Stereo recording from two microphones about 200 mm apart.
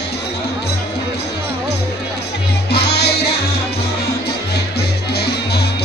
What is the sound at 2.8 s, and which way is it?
Music, 55° left (ahead or behind).